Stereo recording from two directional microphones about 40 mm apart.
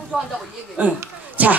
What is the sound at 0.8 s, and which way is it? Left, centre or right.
Speech, right.